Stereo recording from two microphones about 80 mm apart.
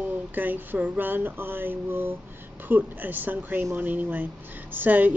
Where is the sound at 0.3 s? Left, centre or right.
Right.